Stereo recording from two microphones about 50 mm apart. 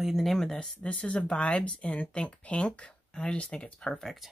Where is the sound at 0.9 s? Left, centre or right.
Left.